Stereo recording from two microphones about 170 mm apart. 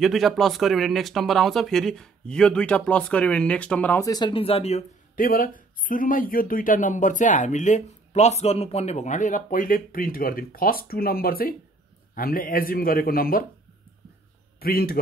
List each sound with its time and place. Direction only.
0.0 s speech: centre (ahead or behind)
4.1 s speech: 30° left (ahead or behind)
5.1 s speech: 55° left (ahead or behind)
14.6 s speech: 60° left (ahead or behind)